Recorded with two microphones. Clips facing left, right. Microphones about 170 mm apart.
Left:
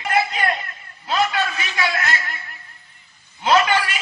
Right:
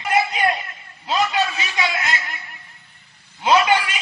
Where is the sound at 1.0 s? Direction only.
20° right (ahead or behind).